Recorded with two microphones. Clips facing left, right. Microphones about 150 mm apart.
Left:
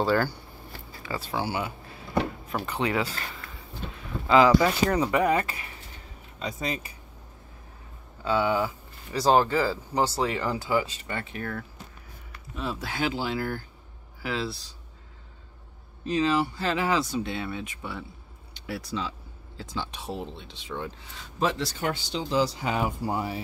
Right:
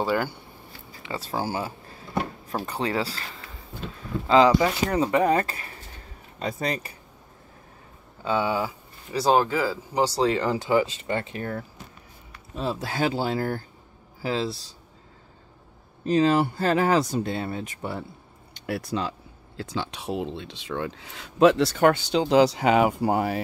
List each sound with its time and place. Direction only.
0.0 s speech: 15° right (ahead or behind)
1.0 s speech: 25° right (ahead or behind)
1.3 s speech: 35° right (ahead or behind)
4.3 s speech: 25° right (ahead or behind)
6.4 s speech: 50° right (ahead or behind)
8.2 s speech: 20° right (ahead or behind)
9.2 s speech: 5° right (ahead or behind); by 14.6 s 35° right (ahead or behind)
16.1 s speech: 45° right (ahead or behind)
18.5 s speech: 55° right (ahead or behind)